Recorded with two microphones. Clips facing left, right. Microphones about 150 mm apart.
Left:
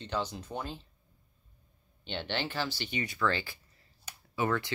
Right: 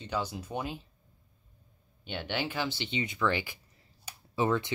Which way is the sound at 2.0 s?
10° right (ahead or behind).